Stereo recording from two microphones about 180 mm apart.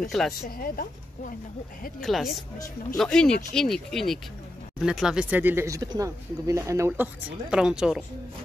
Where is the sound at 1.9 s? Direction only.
Centre (ahead or behind).